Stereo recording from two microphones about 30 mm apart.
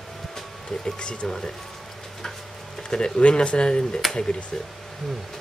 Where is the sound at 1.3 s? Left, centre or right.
Centre.